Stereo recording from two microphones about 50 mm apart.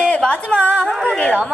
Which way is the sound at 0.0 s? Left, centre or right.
Left.